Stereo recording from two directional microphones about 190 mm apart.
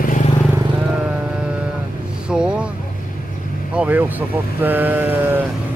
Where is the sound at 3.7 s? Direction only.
5° right (ahead or behind).